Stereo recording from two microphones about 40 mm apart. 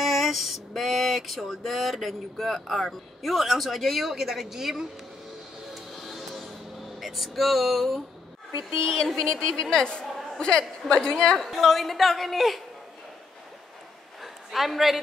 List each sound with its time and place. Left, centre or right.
0.0 s a sound: centre
5.9 s music: centre
7.0 s a woman's voice: centre
8.8 s a woman's voice: centre
11.3 s a woman's voice: centre
14.2 s a sound: centre